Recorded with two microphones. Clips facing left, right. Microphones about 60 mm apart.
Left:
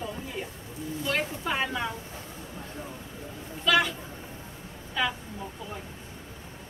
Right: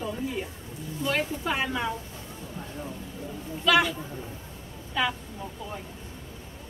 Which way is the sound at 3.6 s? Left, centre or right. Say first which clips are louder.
Right 2 dB; centre.